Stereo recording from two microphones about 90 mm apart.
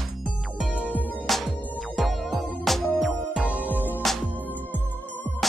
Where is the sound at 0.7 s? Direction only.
20° left (ahead or behind).